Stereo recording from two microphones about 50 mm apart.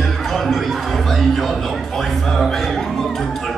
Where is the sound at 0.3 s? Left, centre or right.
Centre.